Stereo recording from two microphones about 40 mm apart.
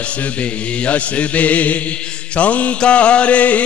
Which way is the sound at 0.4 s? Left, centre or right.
Left.